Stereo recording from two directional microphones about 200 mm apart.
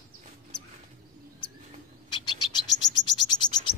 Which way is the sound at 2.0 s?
20° left (ahead or behind).